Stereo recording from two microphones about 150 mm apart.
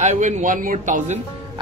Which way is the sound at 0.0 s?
50° right (ahead or behind).